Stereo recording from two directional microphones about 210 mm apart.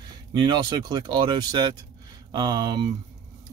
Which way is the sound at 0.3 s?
20° right (ahead or behind).